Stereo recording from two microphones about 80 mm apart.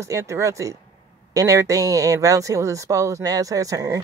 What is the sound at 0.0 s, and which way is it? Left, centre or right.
Speech, right.